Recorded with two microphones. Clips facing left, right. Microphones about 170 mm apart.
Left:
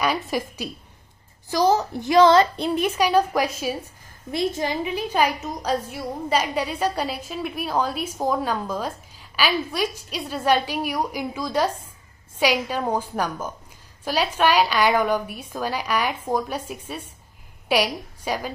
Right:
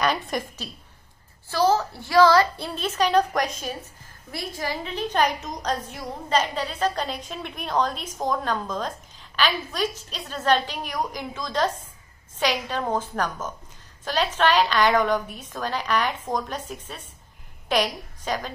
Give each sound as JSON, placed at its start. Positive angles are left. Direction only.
{"t": 0.0, "sound": "a woman's voice", "side_deg": 5}
{"t": 4.3, "sound": "a woman's voice", "side_deg": 20}